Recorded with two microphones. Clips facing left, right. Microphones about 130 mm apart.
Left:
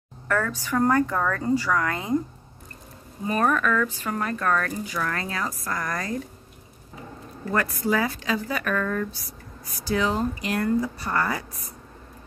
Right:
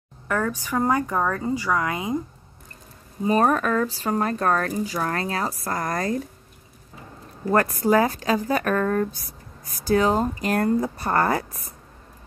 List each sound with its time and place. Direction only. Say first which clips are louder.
0.3 s a woman's voice: right 1 dB; 15° right (ahead or behind)
3.3 s speech: right 3 dB; 35° right (ahead or behind)
7.5 s speech: right 5 dB; 50° right (ahead or behind)